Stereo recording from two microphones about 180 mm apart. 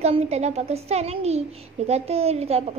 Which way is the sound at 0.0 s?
40° right (ahead or behind).